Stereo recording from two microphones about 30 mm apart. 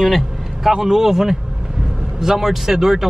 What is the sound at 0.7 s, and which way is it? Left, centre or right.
Speech, centre.